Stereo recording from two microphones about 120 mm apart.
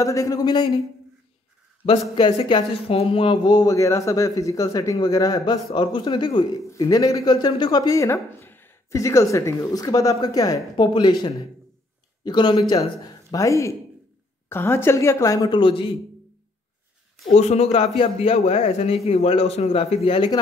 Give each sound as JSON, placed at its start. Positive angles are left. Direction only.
{"t": 0.0, "sound": "speech", "side_deg": 25}
{"t": 1.9, "sound": "speech", "side_deg": 40}
{"t": 2.5, "sound": "speech", "side_deg": 50}
{"t": 15.6, "sound": "a man's voice", "side_deg": 45}
{"t": 17.3, "sound": "speech", "side_deg": 65}